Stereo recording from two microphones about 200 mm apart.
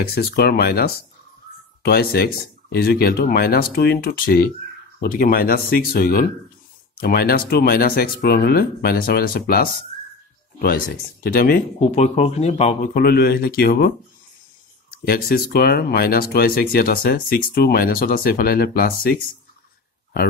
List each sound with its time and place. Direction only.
0.0 s speech: 50° left (ahead or behind)
11.2 s speech: 45° left (ahead or behind)